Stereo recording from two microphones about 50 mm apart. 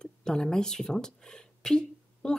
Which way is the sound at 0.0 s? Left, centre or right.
Centre.